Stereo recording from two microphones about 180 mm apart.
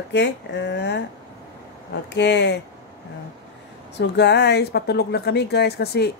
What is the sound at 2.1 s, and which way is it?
Speech, 75° left (ahead or behind).